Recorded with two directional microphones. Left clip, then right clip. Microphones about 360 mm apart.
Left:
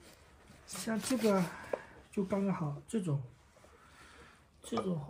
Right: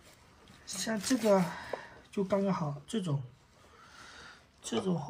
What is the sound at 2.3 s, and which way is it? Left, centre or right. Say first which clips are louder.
Speech: right 6 dB; centre.